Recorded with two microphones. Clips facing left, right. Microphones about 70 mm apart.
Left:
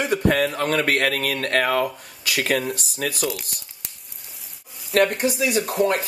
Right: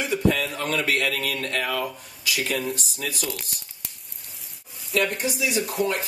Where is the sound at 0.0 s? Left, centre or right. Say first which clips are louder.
Left 3 dB; left.